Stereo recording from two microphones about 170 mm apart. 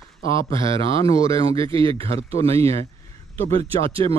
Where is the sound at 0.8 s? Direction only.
35° right (ahead or behind).